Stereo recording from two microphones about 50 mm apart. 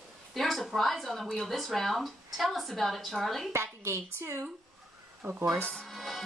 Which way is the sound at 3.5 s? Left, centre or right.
Right.